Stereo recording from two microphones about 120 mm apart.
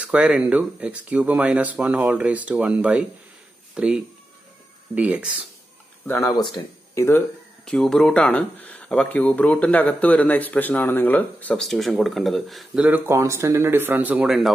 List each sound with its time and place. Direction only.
0.0 s speech: 10° right (ahead or behind)
6.0 s speech: 25° left (ahead or behind)
6.3 s speech: 40° left (ahead or behind)
7.0 s speech: 20° left (ahead or behind)
7.6 s speech: 5° left (ahead or behind)
12.8 s speech: 15° right (ahead or behind)